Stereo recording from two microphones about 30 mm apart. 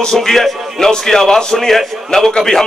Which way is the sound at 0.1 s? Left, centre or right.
Centre.